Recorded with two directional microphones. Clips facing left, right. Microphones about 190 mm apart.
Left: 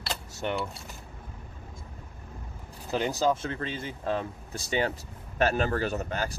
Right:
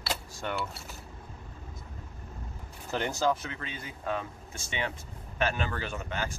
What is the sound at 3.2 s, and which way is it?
Speech, 25° left (ahead or behind).